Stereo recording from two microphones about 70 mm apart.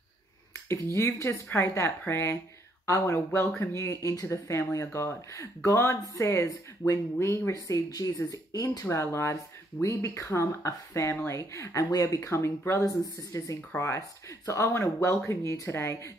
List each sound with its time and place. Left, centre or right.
0.7 s speech: left
3.3 s speech: left
8.9 s speech: left